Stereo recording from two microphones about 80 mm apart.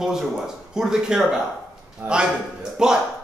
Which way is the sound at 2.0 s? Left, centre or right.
Right.